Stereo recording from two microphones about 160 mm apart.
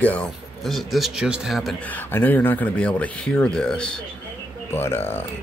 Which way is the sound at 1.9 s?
10° left (ahead or behind).